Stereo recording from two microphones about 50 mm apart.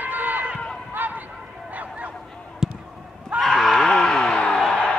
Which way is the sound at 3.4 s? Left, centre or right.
Centre.